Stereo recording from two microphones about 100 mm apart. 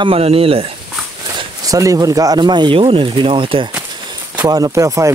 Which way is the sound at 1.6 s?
35° right (ahead or behind).